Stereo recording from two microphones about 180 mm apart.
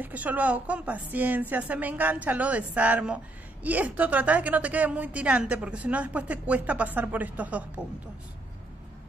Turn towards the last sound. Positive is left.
turn(degrees=-10)  # may be behind; listen again after turning